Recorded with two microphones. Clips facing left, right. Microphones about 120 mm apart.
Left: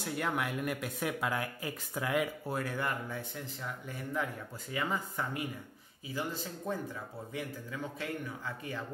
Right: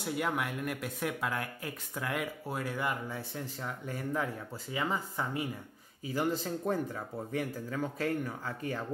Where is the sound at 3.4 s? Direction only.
40° right (ahead or behind).